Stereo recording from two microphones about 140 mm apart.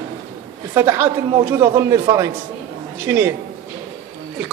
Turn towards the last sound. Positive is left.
turn(degrees=-15)  # may be behind; listen again after turning